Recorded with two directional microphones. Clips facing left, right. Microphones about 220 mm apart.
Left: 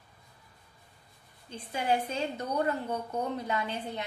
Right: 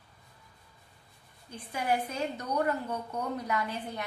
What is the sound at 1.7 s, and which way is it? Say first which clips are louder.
A woman's voice: left 1 dB; 25° left (ahead or behind).